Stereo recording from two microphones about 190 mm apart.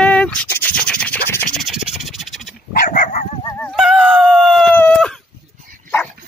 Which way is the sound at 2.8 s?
45° left (ahead or behind).